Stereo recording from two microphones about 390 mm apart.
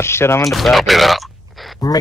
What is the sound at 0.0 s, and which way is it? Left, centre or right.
Speech, centre.